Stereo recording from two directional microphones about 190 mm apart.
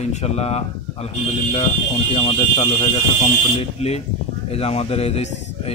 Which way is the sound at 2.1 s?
30° left (ahead or behind).